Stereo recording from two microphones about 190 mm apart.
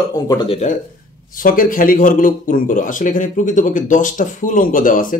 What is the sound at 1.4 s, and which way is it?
Speech, 45° left (ahead or behind).